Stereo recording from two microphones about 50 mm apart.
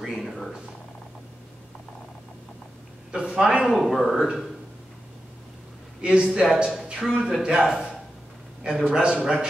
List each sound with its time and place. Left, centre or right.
0.0 s speech: centre
3.1 s a man's voice: centre
3.6 s speech: centre
5.9 s a man's voice: centre
6.4 s a man's voice: centre